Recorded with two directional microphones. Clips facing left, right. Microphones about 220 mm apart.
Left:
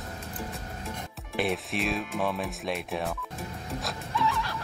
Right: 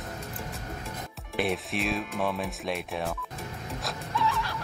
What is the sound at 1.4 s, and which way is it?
Speech, centre (ahead or behind).